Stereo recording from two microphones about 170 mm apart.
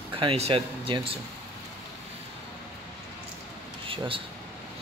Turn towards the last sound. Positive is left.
turn(degrees=-30)  # may be behind; listen again after turning